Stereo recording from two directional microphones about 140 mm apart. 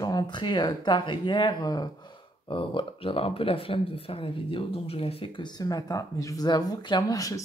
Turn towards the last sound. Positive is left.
turn(degrees=25)  # may be behind; listen again after turning